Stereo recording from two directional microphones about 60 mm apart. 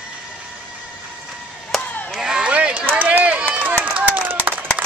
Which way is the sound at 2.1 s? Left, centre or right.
Centre.